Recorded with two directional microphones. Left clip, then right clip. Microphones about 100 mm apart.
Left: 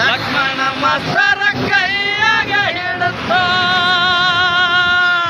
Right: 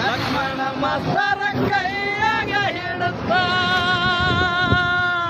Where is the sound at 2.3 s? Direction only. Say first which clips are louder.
Left 6 dB; 30° left (ahead or behind).